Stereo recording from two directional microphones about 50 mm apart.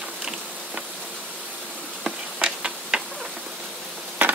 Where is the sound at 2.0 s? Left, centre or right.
Centre.